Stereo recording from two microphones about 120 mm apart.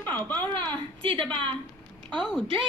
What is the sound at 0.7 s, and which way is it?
Speech, 45° right (ahead or behind).